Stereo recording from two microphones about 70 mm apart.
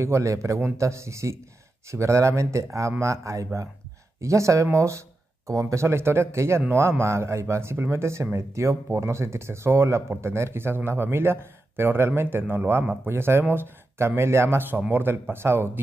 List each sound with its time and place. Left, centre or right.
0.0 s speech: right